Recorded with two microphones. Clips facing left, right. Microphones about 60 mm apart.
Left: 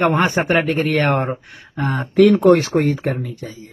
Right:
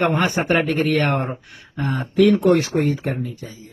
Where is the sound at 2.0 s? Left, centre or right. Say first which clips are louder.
Left 3 dB; left.